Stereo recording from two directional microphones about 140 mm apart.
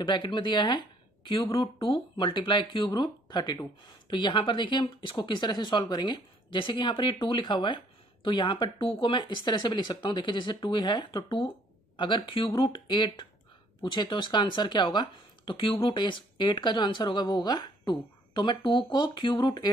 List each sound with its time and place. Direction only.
0.0 s a woman's voice: 35° left (ahead or behind)